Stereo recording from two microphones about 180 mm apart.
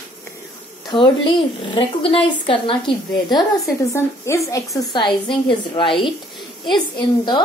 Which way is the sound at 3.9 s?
15° left (ahead or behind).